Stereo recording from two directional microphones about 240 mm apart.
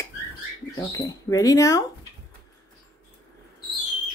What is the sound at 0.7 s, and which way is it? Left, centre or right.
Speech, centre.